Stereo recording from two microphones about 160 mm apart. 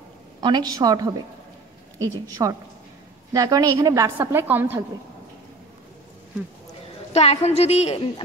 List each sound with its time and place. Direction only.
0.4 s a woman's voice: 25° right (ahead or behind)
7.1 s a woman's voice: 40° left (ahead or behind)